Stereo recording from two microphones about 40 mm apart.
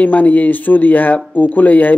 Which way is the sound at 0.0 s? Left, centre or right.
Left.